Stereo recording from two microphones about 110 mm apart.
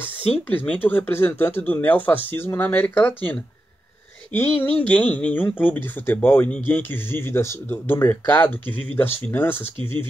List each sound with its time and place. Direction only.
0.5 s speech: 20° left (ahead or behind)
4.4 s speech: 15° left (ahead or behind)